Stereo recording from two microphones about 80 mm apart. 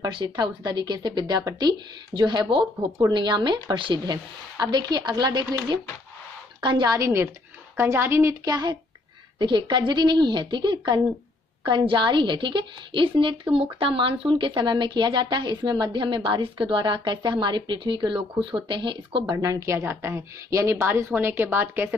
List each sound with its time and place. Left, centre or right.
0.1 s a woman's voice: right
3.7 s speech: right
4.0 s a woman's voice: right
6.8 s a woman's voice: right
9.4 s a woman's voice: right
16.3 s a woman's voice: right
19.3 s a woman's voice: right
19.8 s a woman's voice: right